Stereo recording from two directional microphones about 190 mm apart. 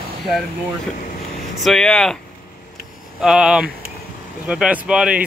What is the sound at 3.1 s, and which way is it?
Speech, 5° right (ahead or behind).